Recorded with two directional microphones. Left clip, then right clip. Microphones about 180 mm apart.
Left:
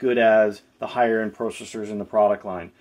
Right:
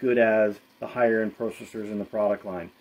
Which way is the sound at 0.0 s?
25° right (ahead or behind).